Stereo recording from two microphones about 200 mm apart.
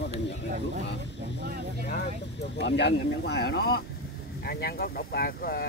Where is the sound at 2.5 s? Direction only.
60° left (ahead or behind).